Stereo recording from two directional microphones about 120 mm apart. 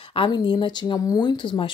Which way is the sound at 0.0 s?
45° left (ahead or behind).